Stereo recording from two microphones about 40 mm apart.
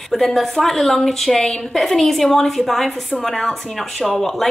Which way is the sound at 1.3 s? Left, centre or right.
Centre.